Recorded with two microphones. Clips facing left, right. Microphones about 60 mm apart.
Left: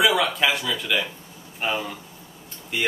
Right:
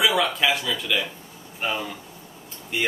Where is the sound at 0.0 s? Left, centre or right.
Centre.